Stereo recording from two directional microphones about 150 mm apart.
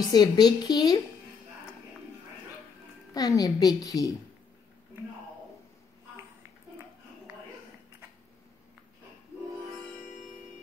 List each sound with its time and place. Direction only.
0.0 s a woman's voice: 25° left (ahead or behind)
3.2 s a woman's voice: 25° left (ahead or behind)